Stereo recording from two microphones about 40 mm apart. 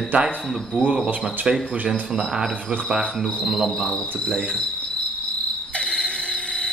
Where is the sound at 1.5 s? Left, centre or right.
Centre.